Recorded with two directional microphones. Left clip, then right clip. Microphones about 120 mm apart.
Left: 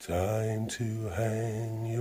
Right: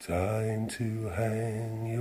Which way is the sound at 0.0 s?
20° left (ahead or behind).